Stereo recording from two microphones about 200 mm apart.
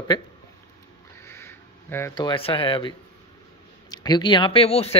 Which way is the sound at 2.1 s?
25° left (ahead or behind).